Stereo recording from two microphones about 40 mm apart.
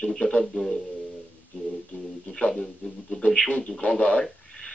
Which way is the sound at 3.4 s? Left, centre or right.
Left.